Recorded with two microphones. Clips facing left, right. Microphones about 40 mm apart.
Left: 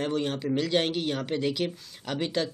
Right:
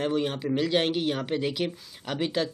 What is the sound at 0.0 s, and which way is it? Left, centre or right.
Speech, centre.